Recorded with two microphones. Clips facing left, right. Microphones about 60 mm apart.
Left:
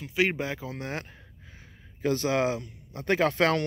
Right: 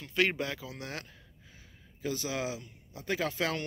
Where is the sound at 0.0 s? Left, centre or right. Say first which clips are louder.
Left 3 dB; centre.